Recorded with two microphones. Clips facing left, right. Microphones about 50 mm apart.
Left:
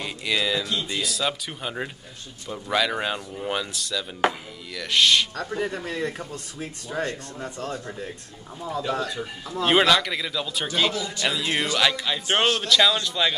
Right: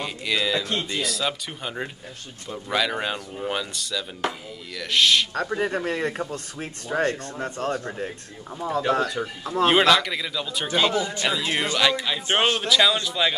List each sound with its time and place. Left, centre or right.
0.0 s speech: centre
5.3 s speech: right
9.4 s speech: right
9.7 s speech: centre
10.9 s a man's voice: right
11.2 s a man's voice: centre